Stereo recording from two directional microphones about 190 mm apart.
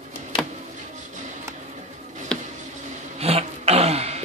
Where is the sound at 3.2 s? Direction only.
35° right (ahead or behind).